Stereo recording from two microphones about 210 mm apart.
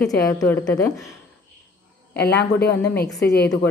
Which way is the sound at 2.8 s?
5° left (ahead or behind).